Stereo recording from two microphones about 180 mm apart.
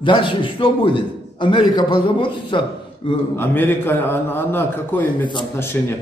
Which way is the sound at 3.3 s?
10° left (ahead or behind).